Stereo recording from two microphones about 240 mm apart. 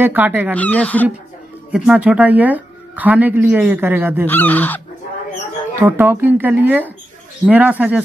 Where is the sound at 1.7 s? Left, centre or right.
Centre.